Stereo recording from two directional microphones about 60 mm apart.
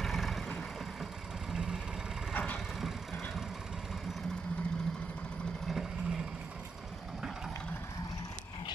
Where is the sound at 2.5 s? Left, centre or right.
Centre.